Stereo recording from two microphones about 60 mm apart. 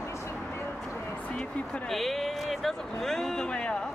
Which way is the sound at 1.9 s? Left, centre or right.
Centre.